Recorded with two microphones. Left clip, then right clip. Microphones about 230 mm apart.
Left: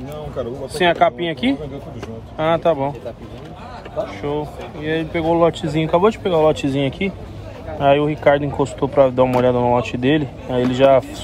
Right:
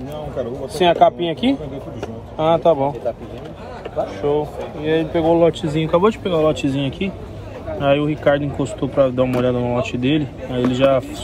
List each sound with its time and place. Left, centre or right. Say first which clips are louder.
0.7 s speech: right 2 dB; centre
4.2 s speech: right 4 dB; centre
5.3 s speech: even; left
5.8 s speech: left 2 dB; centre
6.5 s speech: left 1 dB; left
7.0 s speech: left 2 dB; centre